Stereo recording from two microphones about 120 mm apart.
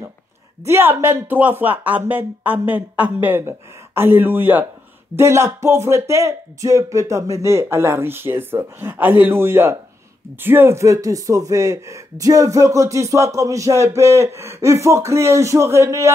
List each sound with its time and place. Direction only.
0.7 s speech: 20° right (ahead or behind)